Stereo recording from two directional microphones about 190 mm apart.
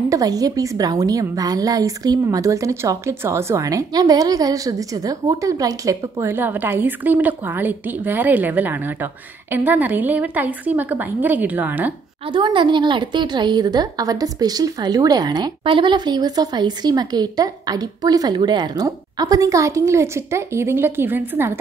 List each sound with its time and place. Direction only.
0.1 s a woman's voice: 20° right (ahead or behind)
12.3 s a woman's voice: 25° right (ahead or behind)